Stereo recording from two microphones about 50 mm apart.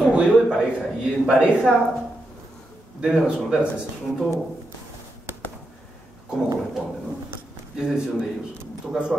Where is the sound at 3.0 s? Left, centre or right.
Centre.